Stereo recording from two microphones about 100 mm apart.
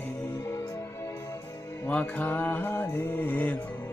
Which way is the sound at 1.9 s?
15° left (ahead or behind).